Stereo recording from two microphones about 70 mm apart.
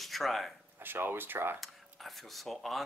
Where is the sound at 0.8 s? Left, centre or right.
Right.